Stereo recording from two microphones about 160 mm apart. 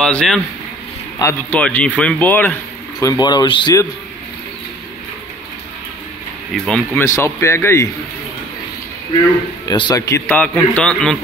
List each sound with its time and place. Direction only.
0.0 s a man's voice: 5° left (ahead or behind)
3.0 s speech: 25° left (ahead or behind)
6.5 s speech: centre (ahead or behind)
7.0 s a man's voice: 15° left (ahead or behind)
9.7 s a man's voice: 25° left (ahead or behind); by 11.1 s 5° left (ahead or behind)